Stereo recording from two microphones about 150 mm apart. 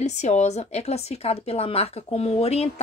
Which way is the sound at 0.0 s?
50° left (ahead or behind).